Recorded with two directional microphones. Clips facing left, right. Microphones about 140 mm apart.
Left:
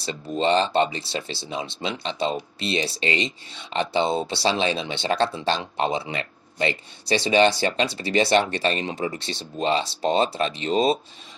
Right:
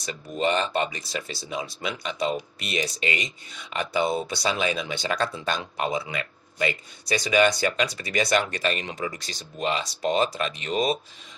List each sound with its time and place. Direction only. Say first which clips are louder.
0.0 s speech: left 3 dB; 25° left (ahead or behind)